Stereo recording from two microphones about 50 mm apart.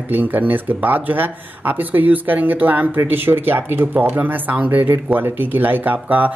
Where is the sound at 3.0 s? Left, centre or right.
Right.